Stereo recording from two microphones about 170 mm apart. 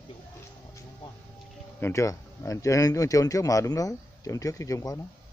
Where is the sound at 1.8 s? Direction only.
15° left (ahead or behind).